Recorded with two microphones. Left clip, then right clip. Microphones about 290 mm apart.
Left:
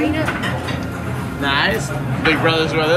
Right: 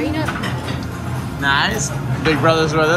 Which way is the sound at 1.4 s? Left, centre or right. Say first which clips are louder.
Right 1 dB; centre.